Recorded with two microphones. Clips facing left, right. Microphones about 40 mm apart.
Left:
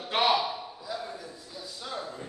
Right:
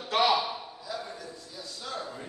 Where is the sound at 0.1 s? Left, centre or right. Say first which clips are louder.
Even; centre.